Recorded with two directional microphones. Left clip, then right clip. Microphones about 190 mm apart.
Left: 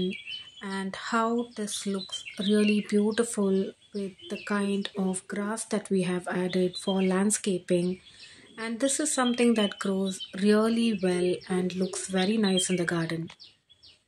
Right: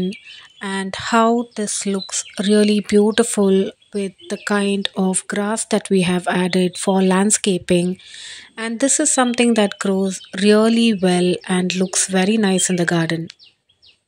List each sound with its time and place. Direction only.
0.1 s speech: 40° right (ahead or behind)